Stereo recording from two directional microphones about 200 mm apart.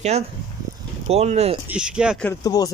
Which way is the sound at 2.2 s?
20° left (ahead or behind).